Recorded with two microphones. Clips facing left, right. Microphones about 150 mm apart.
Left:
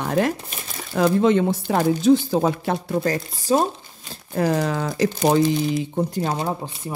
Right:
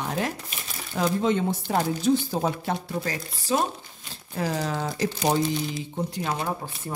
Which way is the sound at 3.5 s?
40° left (ahead or behind).